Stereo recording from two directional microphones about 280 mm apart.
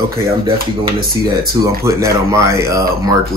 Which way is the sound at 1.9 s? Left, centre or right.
Centre.